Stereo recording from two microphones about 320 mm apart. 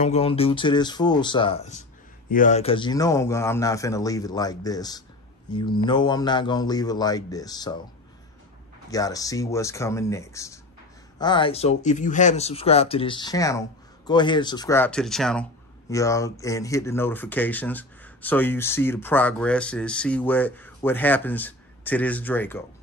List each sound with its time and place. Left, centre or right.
0.0 s speech: centre
8.9 s speech: centre